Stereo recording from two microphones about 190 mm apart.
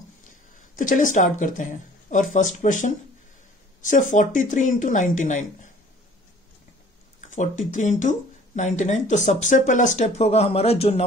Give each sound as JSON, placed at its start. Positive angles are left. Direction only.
{"t": 0.7, "sound": "speech", "side_deg": 45}
{"t": 7.2, "sound": "speech", "side_deg": 40}